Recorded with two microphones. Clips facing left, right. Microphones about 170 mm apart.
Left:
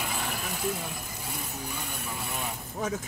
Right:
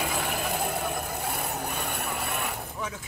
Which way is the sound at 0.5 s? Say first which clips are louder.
Right 3 dB; 55° right (ahead or behind).